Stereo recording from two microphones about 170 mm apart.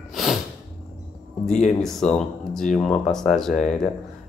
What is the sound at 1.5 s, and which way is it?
Music, 45° left (ahead or behind).